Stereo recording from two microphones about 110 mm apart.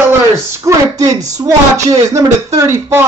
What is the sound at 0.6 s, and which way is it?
Speech, 30° right (ahead or behind).